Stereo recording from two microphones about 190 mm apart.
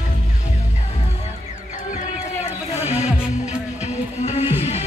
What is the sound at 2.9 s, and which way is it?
Music, 35° left (ahead or behind).